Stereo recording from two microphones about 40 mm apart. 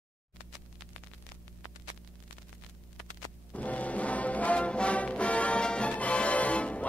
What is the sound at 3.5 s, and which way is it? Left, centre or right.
Music, left.